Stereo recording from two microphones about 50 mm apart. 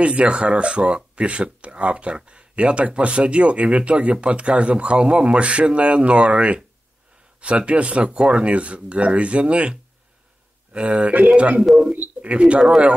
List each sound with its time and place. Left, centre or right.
0.0 s speech: right
11.6 s speech: centre
12.2 s speech: right